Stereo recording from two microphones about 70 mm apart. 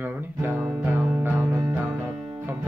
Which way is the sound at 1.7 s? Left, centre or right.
Right.